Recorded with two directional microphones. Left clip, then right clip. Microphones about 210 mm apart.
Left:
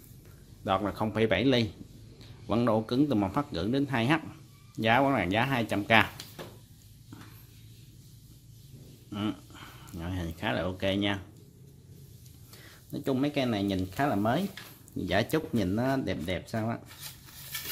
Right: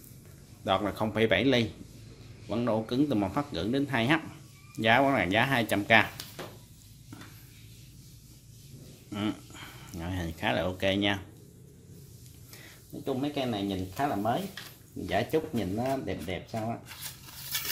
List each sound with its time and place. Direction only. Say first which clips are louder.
0.7 s speech: right 1 dB; 15° left (ahead or behind)
2.4 s speech: left 2 dB; 30° left (ahead or behind); by 6.0 s 10° left (ahead or behind)
9.1 s a sound: right 1 dB; 10° left (ahead or behind)
13.0 s speech: left 2 dB; 40° left (ahead or behind)